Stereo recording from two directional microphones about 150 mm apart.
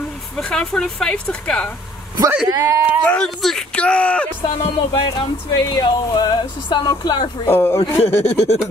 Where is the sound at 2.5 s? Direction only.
20° right (ahead or behind).